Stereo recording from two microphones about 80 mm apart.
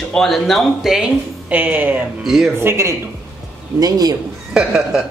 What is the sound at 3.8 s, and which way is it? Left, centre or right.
Speech, right.